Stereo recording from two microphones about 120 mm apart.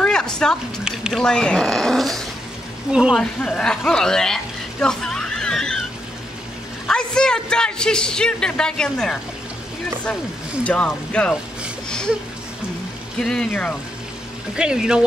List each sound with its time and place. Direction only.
0.0 s a sound: 5° left (ahead or behind)
0.8 s a sound: 5° right (ahead or behind)
1.2 s speech: 5° left (ahead or behind)
3.2 s speech: 5° left (ahead or behind)
6.9 s a man's voice: 5° left (ahead or behind)
10.6 s a man's voice: 10° left (ahead or behind)
13.2 s a man's voice: 5° left (ahead or behind)
14.5 s speech: 5° right (ahead or behind)